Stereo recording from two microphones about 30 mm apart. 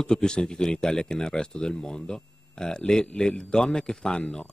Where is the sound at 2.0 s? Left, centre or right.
Left.